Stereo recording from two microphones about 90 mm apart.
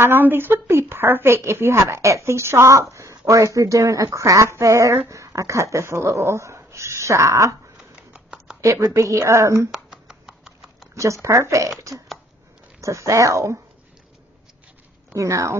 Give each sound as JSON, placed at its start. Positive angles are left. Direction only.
{"t": 0.0, "sound": "a woman's voice", "side_deg": -25}
{"t": 7.7, "sound": "a sound", "side_deg": -10}
{"t": 8.5, "sound": "a woman's voice", "side_deg": -35}
{"t": 9.7, "sound": "a sound", "side_deg": -5}
{"t": 11.2, "sound": "a woman's voice", "side_deg": -35}
{"t": 12.8, "sound": "a woman's voice", "side_deg": -35}
{"t": 15.1, "sound": "a woman's voice", "side_deg": -35}